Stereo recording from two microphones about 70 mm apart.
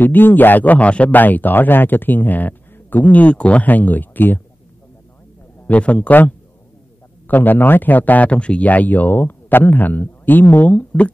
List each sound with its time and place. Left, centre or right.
0.0 s speech: left
5.7 s speech: centre